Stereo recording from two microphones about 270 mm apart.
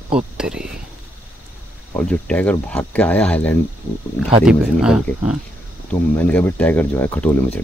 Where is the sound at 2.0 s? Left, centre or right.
Centre.